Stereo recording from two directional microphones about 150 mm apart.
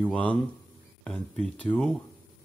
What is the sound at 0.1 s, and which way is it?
Speech, 10° left (ahead or behind).